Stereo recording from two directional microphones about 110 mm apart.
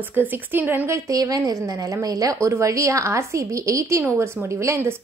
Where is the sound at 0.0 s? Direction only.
15° right (ahead or behind).